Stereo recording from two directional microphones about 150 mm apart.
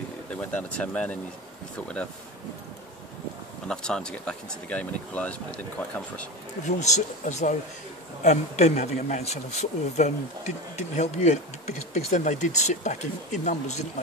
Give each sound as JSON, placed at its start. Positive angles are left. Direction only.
{"t": 0.3, "sound": "speech", "side_deg": 10}
{"t": 3.6, "sound": "speech", "side_deg": 5}
{"t": 6.8, "sound": "speech", "side_deg": 50}